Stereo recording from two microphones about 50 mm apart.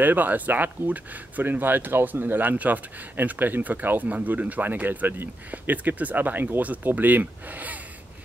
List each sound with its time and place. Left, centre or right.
0.0 s speech: right